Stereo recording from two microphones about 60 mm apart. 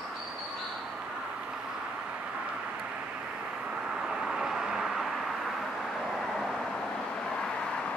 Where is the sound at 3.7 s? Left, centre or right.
Centre.